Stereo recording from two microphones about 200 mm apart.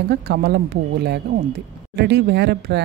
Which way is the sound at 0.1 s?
55° right (ahead or behind).